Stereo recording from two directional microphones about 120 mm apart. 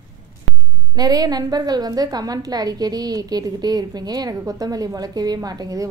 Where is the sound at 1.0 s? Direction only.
35° right (ahead or behind).